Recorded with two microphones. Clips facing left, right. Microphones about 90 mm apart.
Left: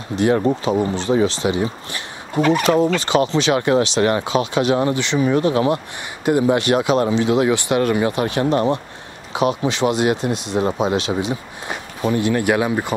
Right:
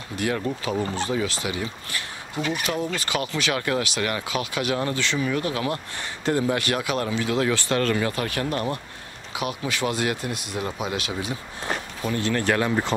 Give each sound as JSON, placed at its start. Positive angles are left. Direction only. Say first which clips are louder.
{"t": 0.1, "sound": "speech", "louder": "left 10 dB", "side_deg": 25}
{"t": 0.7, "sound": "speech", "louder": "left 7 dB", "side_deg": 20}
{"t": 2.3, "sound": "speech", "louder": "left 11 dB", "side_deg": 55}
{"t": 3.0, "sound": "speech", "louder": "left 10 dB", "side_deg": 25}